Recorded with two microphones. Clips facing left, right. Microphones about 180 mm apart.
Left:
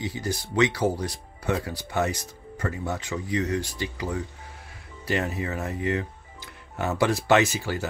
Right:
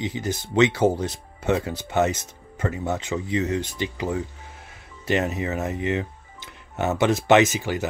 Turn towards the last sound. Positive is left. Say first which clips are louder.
# right 4 dB
turn(degrees=-20)  # may be behind; listen again after turning